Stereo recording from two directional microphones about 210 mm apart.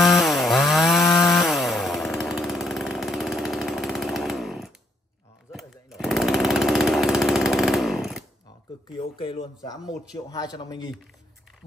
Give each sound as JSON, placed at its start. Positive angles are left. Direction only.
{"t": 0.0, "sound": "chainsaw", "side_deg": 0}
{"t": 1.0, "sound": "chainsaw", "side_deg": 15}
{"t": 1.3, "sound": "chainsaw", "side_deg": 0}
{"t": 5.5, "sound": "a sound", "side_deg": 0}
{"t": 8.9, "sound": "a sound", "side_deg": 25}
{"t": 10.1, "sound": "speech", "side_deg": 15}